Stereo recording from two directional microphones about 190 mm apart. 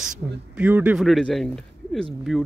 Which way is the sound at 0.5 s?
5° right (ahead or behind).